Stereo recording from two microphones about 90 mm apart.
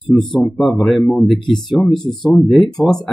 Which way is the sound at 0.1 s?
Centre (ahead or behind).